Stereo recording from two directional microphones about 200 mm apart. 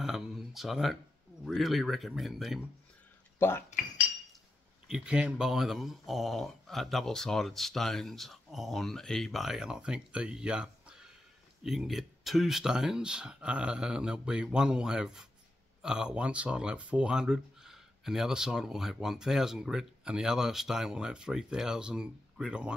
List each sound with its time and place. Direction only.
0.0 s a sound: centre (ahead or behind)
1.4 s speech: centre (ahead or behind)
3.3 s speech: 10° left (ahead or behind)
4.8 s speech: 5° right (ahead or behind)